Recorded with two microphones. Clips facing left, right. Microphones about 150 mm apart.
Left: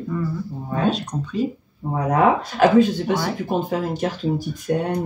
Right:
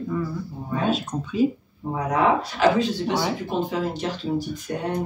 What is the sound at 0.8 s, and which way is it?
Speech, 5° right (ahead or behind).